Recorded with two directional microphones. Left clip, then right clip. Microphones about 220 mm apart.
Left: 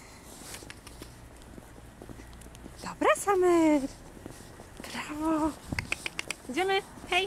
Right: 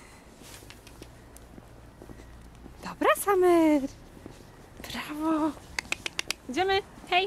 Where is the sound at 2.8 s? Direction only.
15° right (ahead or behind).